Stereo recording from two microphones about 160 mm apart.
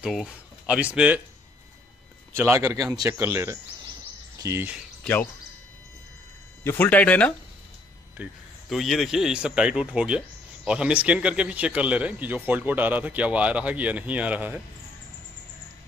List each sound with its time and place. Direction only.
0.0 s speech: 5° right (ahead or behind)
2.3 s speech: 15° right (ahead or behind)
5.0 s speech: 10° left (ahead or behind)
6.6 s speech: 10° left (ahead or behind); by 14.6 s 10° right (ahead or behind)